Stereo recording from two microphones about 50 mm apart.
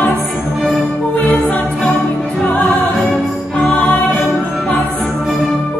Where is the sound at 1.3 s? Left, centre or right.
Left.